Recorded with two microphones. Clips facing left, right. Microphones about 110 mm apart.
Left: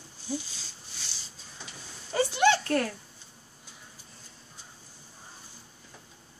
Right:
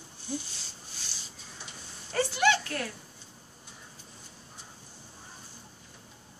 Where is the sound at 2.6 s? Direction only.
45° left (ahead or behind).